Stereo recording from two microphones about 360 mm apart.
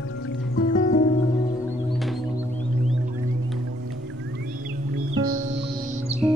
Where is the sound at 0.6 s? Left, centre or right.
Left.